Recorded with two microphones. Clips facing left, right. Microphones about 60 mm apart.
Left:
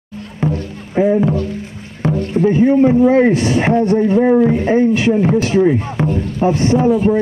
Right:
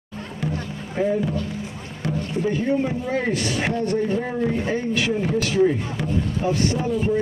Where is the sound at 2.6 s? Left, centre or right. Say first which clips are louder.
Left 13 dB; left.